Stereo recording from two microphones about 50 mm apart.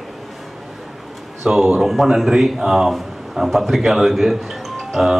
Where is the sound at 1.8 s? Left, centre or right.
Centre.